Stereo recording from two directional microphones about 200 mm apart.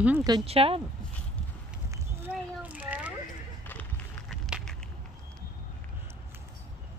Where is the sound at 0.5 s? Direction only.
30° right (ahead or behind).